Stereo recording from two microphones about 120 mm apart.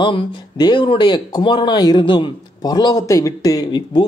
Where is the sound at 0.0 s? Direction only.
45° left (ahead or behind).